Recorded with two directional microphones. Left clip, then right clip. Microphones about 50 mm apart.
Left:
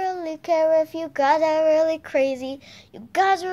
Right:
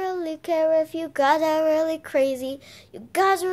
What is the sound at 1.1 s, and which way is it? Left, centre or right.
Child singing, right.